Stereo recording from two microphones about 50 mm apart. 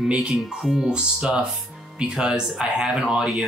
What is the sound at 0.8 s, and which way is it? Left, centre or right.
Speech, centre.